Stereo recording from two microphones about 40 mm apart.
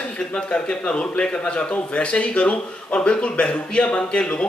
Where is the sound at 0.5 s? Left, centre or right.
Left.